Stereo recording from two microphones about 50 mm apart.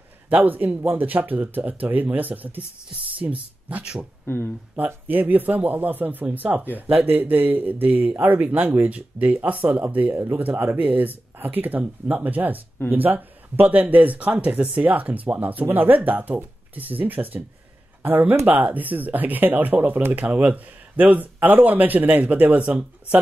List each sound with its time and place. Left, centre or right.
0.3 s speech: right
3.8 s speech: centre
4.7 s speech: right
10.1 s speech: right
10.6 s speech: right
22.6 s speech: right